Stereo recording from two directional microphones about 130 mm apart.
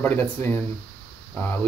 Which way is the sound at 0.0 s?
15° left (ahead or behind).